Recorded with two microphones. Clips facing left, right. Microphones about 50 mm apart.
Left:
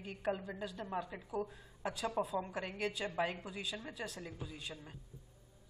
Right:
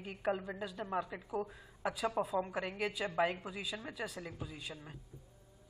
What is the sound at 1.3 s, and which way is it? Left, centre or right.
Speech, centre.